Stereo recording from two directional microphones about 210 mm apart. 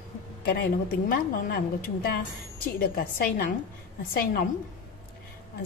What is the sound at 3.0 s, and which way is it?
Speech, 45° left (ahead or behind).